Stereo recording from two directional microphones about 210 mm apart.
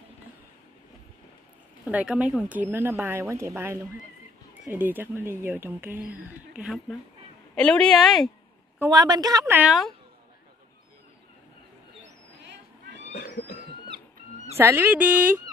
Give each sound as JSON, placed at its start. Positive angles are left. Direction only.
{"t": 1.9, "sound": "a woman's voice", "side_deg": -5}
{"t": 8.7, "sound": "speech", "side_deg": -15}
{"t": 9.6, "sound": "a woman's voice", "side_deg": 0}
{"t": 13.1, "sound": "cat", "side_deg": 50}
{"t": 14.6, "sound": "speech", "side_deg": -10}